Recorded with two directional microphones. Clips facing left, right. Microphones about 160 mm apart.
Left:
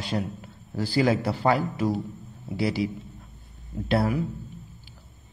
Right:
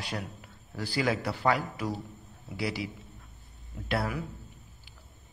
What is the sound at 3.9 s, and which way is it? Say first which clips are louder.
Speech: left 7 dB; 30° left (ahead or behind).